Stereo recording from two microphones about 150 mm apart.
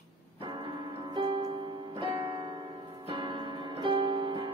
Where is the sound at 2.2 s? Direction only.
30° right (ahead or behind).